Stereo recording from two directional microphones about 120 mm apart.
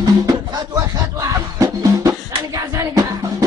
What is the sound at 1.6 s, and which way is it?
Music, 25° right (ahead or behind).